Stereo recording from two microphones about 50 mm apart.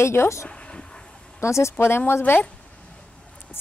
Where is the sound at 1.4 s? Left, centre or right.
Left.